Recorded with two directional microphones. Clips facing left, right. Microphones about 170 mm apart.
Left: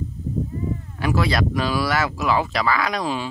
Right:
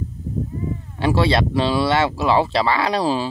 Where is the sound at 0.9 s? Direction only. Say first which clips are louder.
Right 4 dB; 30° right (ahead or behind).